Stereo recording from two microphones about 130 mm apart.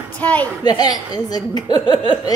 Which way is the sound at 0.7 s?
30° left (ahead or behind).